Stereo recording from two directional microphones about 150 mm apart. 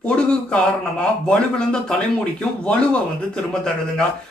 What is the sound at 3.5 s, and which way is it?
Speech, 5° left (ahead or behind).